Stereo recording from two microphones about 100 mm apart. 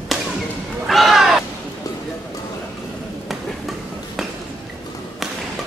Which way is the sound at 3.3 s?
Centre (ahead or behind).